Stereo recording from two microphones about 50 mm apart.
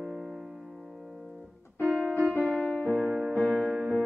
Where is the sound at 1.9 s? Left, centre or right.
Right.